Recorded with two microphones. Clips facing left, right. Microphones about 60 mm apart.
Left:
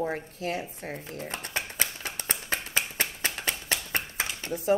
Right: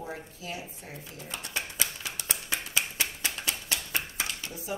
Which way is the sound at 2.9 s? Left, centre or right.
Left.